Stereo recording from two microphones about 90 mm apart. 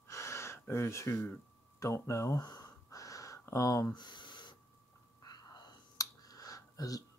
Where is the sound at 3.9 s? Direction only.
55° left (ahead or behind).